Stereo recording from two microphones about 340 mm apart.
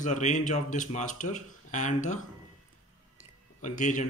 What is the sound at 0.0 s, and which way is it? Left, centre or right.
Speech, left.